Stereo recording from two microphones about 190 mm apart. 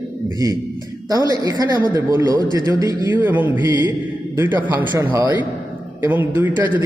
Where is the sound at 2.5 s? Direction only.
20° right (ahead or behind).